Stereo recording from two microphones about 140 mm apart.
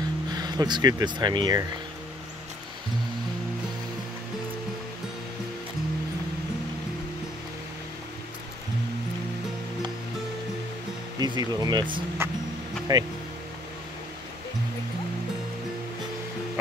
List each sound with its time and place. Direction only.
0.3 s speech: 30° right (ahead or behind)
11.1 s speech: 30° right (ahead or behind)
12.2 s music: 15° right (ahead or behind)
12.9 s speech: 25° right (ahead or behind)